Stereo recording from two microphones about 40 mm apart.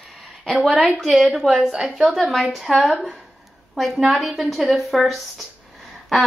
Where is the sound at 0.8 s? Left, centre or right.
Centre.